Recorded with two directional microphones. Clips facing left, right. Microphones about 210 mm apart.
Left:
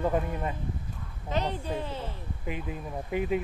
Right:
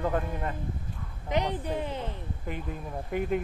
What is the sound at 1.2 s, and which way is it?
Speech, 15° right (ahead or behind).